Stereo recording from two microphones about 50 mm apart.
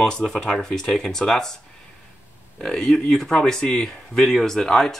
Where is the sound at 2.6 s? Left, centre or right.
Centre.